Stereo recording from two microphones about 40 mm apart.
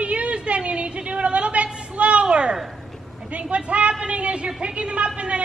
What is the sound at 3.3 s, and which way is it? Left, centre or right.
A man's voice, right.